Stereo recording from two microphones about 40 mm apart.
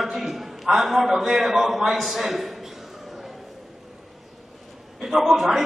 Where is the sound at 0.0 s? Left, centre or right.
Centre.